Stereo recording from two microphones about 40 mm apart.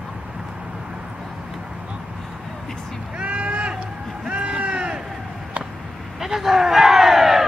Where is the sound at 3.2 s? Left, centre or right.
Right.